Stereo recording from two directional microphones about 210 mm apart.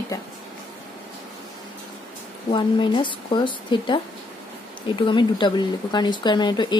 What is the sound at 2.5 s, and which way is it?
Speech, 20° left (ahead or behind).